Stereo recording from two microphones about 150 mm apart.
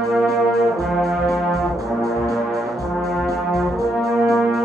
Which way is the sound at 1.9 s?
Centre (ahead or behind).